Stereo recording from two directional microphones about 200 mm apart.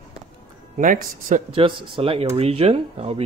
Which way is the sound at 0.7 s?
40° right (ahead or behind).